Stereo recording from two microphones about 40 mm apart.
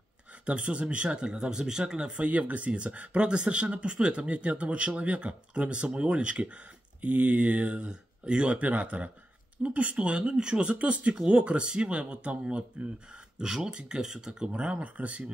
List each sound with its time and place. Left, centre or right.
0.5 s speech: right
2.2 s speech: right
7.9 s speech: right
14.5 s speech: right